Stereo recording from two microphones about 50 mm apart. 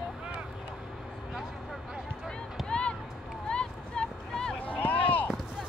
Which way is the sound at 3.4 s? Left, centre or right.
Centre.